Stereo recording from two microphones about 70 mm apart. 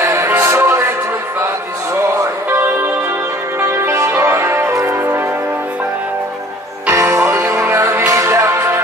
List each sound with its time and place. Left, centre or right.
0.0 s music: right
2.1 s music: right
6.9 s music: right